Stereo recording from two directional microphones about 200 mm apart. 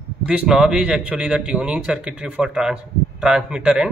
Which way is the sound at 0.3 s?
Centre (ahead or behind).